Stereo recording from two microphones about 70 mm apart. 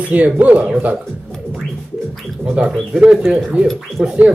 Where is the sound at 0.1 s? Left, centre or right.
Right.